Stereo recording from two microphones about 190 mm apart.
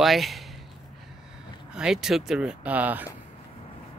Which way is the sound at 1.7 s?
5° right (ahead or behind).